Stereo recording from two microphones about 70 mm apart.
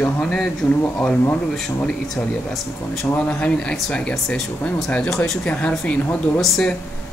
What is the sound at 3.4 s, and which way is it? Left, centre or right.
Speech, centre.